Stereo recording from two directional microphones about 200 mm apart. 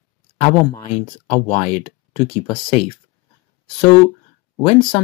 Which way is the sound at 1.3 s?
30° left (ahead or behind).